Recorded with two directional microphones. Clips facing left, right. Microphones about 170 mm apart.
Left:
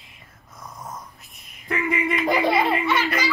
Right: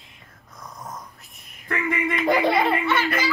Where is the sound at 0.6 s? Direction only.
Centre (ahead or behind).